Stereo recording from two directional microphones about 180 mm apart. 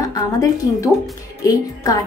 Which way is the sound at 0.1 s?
20° left (ahead or behind).